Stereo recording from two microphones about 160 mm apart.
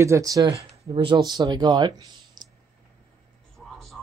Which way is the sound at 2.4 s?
25° right (ahead or behind).